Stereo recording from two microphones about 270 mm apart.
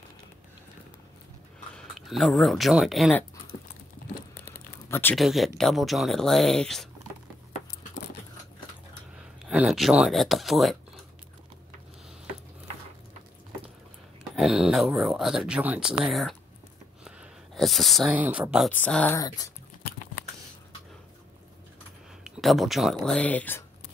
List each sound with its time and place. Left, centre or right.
2.0 s speech: centre
4.8 s speech: centre
9.4 s speech: centre
14.3 s speech: centre
19.8 s a sound: left
22.2 s speech: centre